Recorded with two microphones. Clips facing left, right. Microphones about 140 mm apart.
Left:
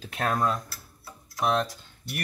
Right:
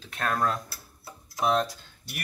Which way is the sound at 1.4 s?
5° right (ahead or behind).